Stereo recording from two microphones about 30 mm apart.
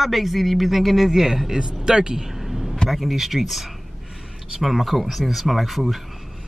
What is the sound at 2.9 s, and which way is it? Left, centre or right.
Speech, centre.